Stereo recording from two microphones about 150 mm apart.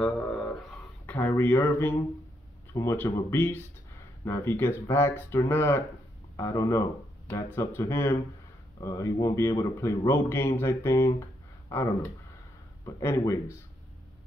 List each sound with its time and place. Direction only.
0.0 s a sound: 5° left (ahead or behind)
2.7 s a man's voice: 20° left (ahead or behind)
12.8 s a man's voice: 20° left (ahead or behind)